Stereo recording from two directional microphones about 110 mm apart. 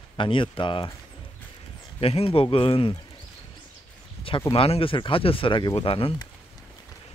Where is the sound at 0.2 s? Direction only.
50° left (ahead or behind).